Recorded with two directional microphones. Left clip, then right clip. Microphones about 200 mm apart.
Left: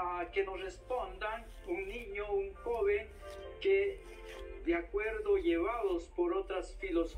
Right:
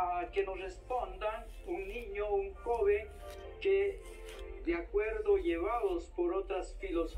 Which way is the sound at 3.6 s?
25° left (ahead or behind).